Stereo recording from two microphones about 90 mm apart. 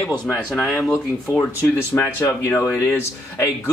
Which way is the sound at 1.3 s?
30° left (ahead or behind).